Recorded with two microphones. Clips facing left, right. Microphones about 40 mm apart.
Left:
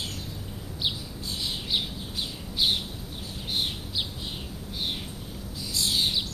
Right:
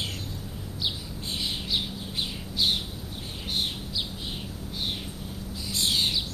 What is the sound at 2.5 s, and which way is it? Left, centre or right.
Bird, centre.